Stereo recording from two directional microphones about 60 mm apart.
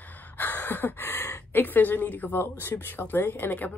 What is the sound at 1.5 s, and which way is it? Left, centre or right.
Speech, left.